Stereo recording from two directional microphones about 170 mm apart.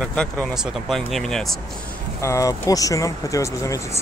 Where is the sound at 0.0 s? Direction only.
5° left (ahead or behind).